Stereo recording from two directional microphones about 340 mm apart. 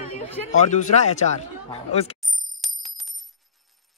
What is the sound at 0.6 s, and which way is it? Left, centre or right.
A man's voice, left.